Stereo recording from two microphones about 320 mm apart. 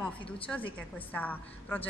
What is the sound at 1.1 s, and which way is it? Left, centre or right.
Speech, centre.